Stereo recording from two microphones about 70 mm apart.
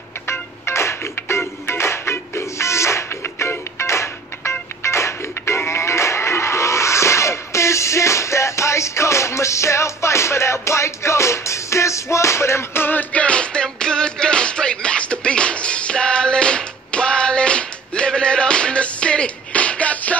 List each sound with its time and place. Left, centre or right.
0.3 s music: left
13.1 s music: centre